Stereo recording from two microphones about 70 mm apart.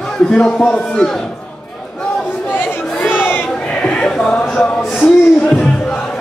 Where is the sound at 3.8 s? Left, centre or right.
Centre.